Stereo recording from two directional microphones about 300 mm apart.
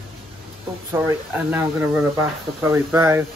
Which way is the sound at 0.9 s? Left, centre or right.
Centre.